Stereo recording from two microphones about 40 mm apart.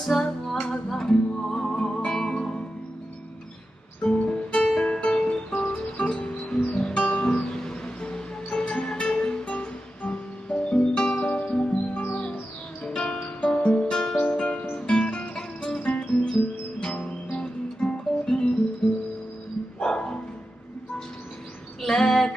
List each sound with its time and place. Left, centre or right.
0.0 s music: centre
4.0 s music: left
12.8 s music: left
15.8 s music: left
16.1 s guitar: left
18.2 s music: centre
19.8 s bow-wow: centre
21.8 s female singing: centre